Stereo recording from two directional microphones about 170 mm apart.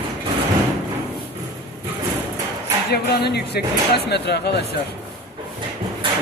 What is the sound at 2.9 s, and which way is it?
Speech, 75° left (ahead or behind).